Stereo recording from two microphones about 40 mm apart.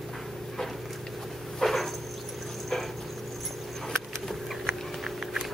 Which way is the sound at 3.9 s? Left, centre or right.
Centre.